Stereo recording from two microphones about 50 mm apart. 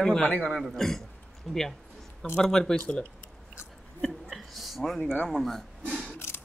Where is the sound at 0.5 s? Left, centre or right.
Centre.